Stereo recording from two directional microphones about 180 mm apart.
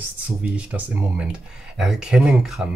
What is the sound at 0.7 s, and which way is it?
Speech, 5° right (ahead or behind).